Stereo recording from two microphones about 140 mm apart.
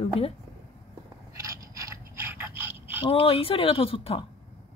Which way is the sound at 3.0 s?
40° left (ahead or behind).